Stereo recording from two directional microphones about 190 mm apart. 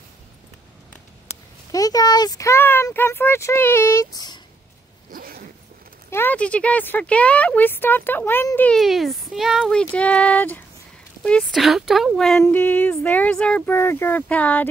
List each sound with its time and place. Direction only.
1.7 s speech: 20° left (ahead or behind)
5.1 s zipper: 50° right (ahead or behind)
6.0 s speech: 10° left (ahead or behind)